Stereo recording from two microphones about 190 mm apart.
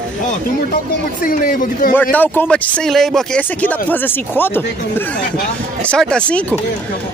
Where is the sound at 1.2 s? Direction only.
50° left (ahead or behind).